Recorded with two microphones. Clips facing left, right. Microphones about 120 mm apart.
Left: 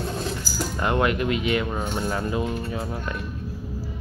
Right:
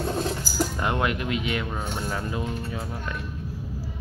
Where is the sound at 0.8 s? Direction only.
Centre (ahead or behind).